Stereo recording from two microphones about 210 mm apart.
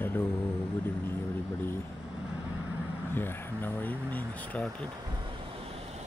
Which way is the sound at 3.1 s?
10° left (ahead or behind).